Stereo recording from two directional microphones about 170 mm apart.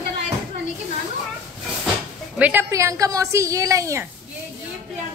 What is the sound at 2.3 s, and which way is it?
Speech, 10° right (ahead or behind).